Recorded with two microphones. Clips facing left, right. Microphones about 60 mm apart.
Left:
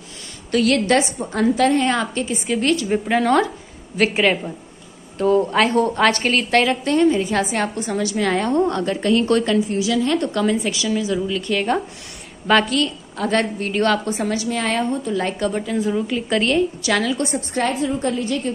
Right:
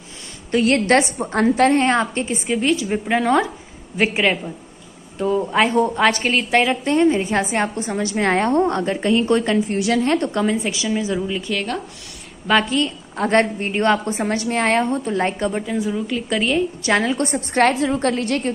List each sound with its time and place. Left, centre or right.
0.5 s a woman's voice: right
2.5 s a woman's voice: centre
5.1 s a woman's voice: centre; by 9.6 s right
9.7 s a woman's voice: right; by 11.4 s centre
12.6 s a woman's voice: right
13.1 s a woman's voice: right
14.3 s a woman's voice: right
15.5 s a woman's voice: centre
15.8 s a woman's voice: centre
16.8 s a woman's voice: right
17.2 s a woman's voice: right